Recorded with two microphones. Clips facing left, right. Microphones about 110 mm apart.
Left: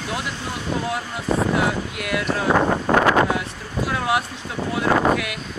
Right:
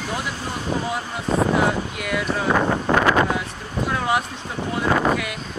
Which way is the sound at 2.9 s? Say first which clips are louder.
Left 1 dB; 35° left (ahead or behind).